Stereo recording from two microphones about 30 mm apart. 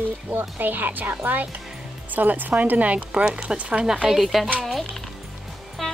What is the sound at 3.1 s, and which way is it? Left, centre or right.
Speech, right.